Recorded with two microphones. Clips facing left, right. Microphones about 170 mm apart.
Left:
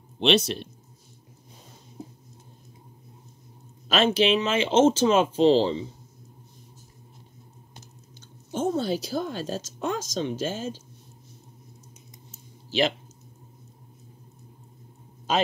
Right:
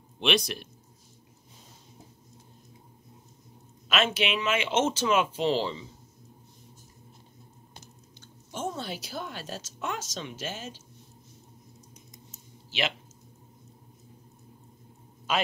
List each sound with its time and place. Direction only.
0.2 s speech: 25° left (ahead or behind)
3.9 s a woman's voice: 30° left (ahead or behind)
8.5 s a woman's voice: 30° left (ahead or behind)